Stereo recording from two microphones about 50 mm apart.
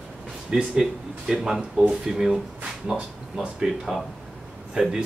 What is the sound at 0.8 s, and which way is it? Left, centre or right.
Speech, centre.